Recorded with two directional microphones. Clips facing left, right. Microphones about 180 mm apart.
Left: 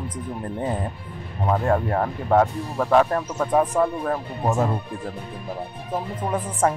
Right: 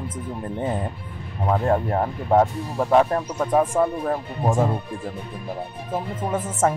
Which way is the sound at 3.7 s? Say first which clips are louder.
Right 1 dB; 40° right (ahead or behind).